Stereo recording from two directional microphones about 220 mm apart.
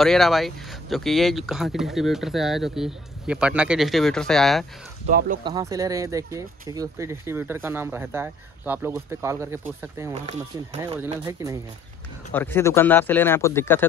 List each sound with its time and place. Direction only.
0.0 s speech: centre (ahead or behind)
5.4 s speech: 15° right (ahead or behind)
12.3 s speech: 10° left (ahead or behind)